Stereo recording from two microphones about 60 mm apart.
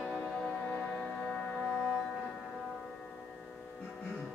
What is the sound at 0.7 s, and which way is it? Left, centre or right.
Music, left.